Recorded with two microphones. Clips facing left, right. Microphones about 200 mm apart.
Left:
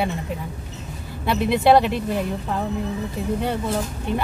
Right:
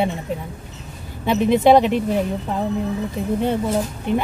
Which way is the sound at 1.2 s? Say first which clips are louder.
Right 3 dB; 15° right (ahead or behind).